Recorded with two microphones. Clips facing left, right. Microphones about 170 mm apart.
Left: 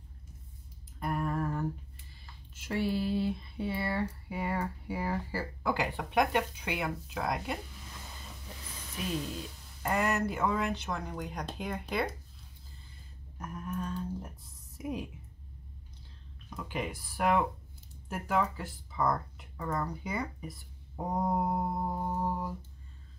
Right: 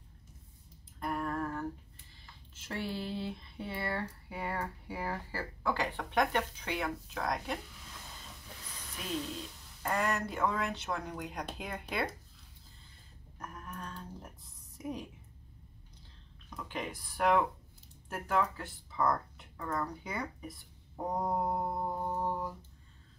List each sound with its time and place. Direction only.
0.9 s a sound: 5° left (ahead or behind)
2.5 s speech: 10° left (ahead or behind)
9.8 s speech: 5° left (ahead or behind)
13.4 s a sound: 5° left (ahead or behind)
14.8 s a woman's voice: 5° left (ahead or behind)
16.4 s speech: 5° left (ahead or behind)